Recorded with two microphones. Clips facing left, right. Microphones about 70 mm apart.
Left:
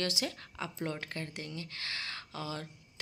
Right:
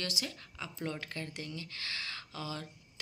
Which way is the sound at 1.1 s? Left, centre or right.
Left.